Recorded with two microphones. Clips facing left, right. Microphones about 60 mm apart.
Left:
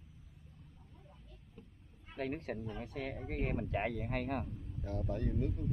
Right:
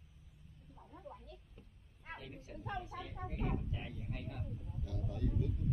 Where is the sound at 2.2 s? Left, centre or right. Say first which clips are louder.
Left 10 dB; left.